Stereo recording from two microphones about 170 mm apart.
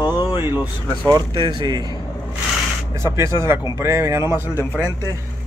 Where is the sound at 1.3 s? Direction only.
25° right (ahead or behind).